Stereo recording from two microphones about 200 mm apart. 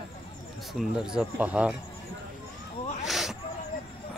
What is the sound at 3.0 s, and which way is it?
Snake, centre (ahead or behind).